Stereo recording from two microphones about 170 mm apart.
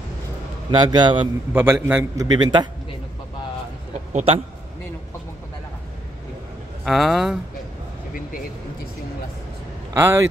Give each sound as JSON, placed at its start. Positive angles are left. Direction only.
{"t": 0.7, "sound": "a man's voice", "side_deg": -25}
{"t": 1.5, "sound": "a man's voice", "side_deg": -15}
{"t": 2.3, "sound": "a man's voice", "side_deg": -25}
{"t": 4.1, "sound": "speech", "side_deg": -35}
{"t": 6.8, "sound": "speech", "side_deg": 0}
{"t": 9.9, "sound": "a man's voice", "side_deg": -15}